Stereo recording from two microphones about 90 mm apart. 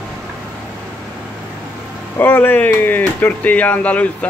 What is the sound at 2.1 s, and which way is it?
Speech, 20° left (ahead or behind).